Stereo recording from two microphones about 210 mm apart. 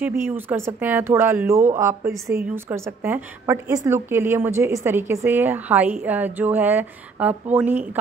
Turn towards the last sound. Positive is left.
turn(degrees=-5)  # may be behind; listen again after turning